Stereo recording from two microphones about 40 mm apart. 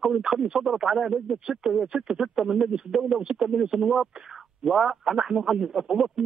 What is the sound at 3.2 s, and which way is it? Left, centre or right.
Speech, right.